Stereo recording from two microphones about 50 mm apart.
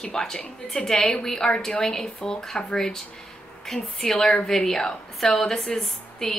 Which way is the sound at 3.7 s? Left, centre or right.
Centre.